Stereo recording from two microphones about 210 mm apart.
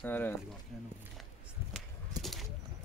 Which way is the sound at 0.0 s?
10° left (ahead or behind).